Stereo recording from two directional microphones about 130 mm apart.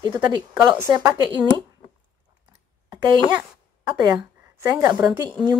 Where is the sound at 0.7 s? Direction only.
20° right (ahead or behind).